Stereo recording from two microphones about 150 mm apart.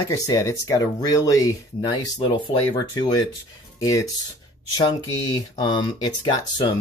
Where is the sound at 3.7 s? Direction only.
25° left (ahead or behind).